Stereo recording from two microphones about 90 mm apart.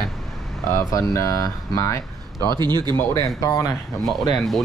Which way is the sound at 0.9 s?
40° left (ahead or behind).